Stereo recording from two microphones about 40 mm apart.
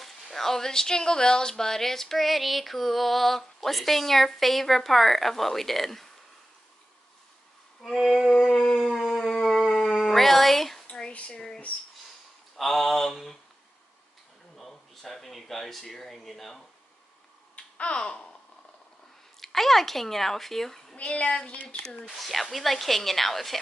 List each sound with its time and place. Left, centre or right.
0.0 s speech: centre
7.8 s a sound: centre
8.5 s howl: centre
11.1 s a child's voice: left
12.5 s speech: centre
14.6 s a sound: centre
17.7 s babbling: left
19.4 s a woman's voice: centre
20.9 s a child's voice: left
22.0 s a woman's voice: centre